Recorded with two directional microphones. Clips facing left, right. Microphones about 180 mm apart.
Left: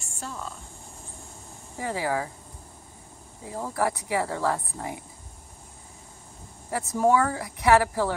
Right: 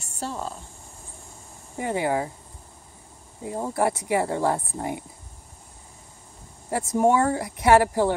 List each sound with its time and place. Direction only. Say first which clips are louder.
0.0 s speech: right 5 dB; 35° right (ahead or behind)
1.8 s speech: right 3 dB; 25° right (ahead or behind)
3.4 s speech: right 3 dB; 25° right (ahead or behind)
7.0 s speech: right 2 dB; 25° right (ahead or behind)